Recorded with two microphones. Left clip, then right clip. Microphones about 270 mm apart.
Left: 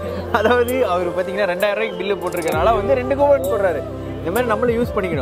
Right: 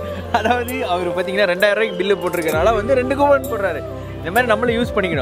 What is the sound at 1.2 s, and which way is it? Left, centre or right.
Speech, right.